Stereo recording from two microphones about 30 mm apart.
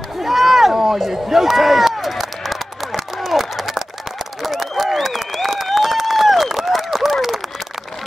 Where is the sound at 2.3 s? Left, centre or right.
Centre.